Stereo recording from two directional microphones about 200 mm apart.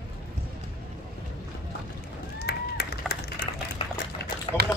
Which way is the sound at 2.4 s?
55° left (ahead or behind).